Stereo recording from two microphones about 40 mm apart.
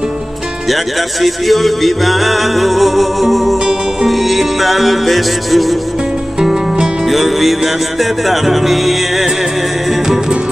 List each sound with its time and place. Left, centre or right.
1.2 s music: centre
7.1 s music: centre